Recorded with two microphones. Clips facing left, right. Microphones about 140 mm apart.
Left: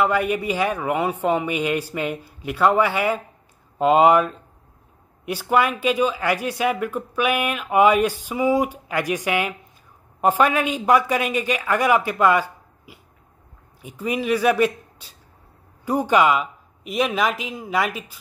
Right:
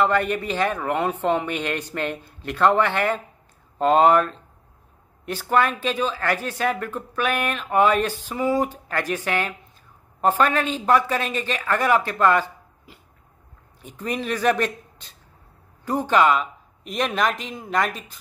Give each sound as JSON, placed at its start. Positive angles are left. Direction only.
{"t": 0.0, "sound": "a man's voice", "side_deg": 10}